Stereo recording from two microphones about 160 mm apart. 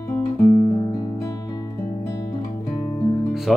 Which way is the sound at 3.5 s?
Centre (ahead or behind).